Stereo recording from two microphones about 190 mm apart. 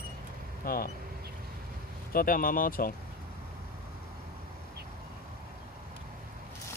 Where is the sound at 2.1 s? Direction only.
45° left (ahead or behind).